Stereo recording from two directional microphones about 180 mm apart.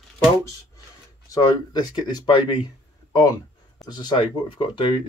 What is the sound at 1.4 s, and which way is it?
Speech, 20° left (ahead or behind).